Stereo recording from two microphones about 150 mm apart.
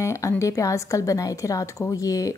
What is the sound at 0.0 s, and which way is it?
A woman's voice, 20° left (ahead or behind).